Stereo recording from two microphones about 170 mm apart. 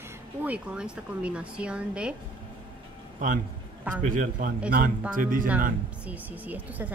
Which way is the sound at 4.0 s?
50° right (ahead or behind).